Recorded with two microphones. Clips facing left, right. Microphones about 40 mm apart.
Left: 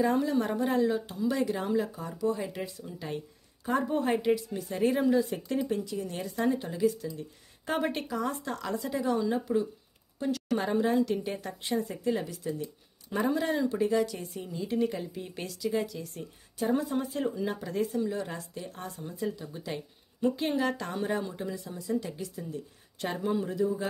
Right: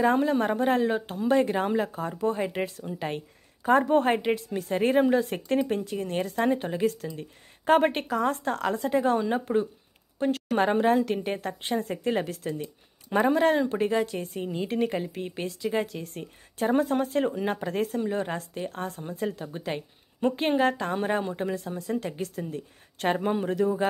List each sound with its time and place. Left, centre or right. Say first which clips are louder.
0.0 s speech: right 4 dB; right
4.2 s a woman's voice: even; right
4.5 s a woman's voice: right 3 dB; right
7.9 s speech: right 5 dB; right
15.3 s speech: right 2 dB; right